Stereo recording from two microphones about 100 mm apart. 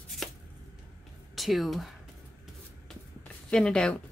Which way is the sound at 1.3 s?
Centre (ahead or behind).